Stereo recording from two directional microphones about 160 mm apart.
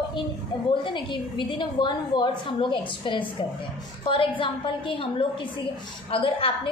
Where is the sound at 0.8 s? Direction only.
30° left (ahead or behind).